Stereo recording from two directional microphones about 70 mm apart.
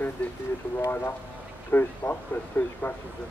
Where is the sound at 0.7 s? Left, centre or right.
Left.